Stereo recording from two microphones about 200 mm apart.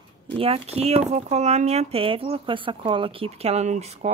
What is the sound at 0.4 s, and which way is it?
Speech, 30° right (ahead or behind).